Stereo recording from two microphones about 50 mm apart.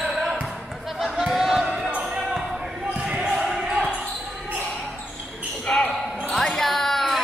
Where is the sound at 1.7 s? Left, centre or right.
Right.